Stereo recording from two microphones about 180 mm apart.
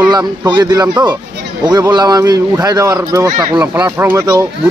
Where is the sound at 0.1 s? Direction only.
20° right (ahead or behind).